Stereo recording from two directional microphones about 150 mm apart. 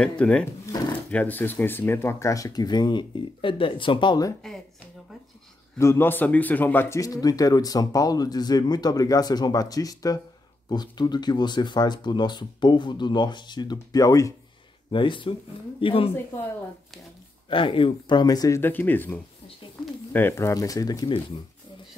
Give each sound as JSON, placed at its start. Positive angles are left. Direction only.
{"t": 0.2, "sound": "speech", "side_deg": 5}
{"t": 5.8, "sound": "speech", "side_deg": 15}
{"t": 14.9, "sound": "speech", "side_deg": 35}
{"t": 17.5, "sound": "speech", "side_deg": 35}
{"t": 18.6, "sound": "speech", "side_deg": 15}